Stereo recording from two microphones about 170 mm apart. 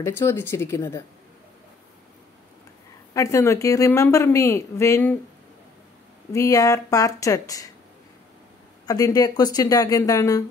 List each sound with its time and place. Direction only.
0.0 s speech: 15° left (ahead or behind)
3.2 s speech: 15° left (ahead or behind)
6.3 s speech: 20° left (ahead or behind)
8.8 s speech: 20° left (ahead or behind)